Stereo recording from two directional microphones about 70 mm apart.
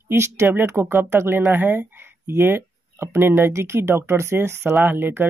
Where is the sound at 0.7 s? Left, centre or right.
Right.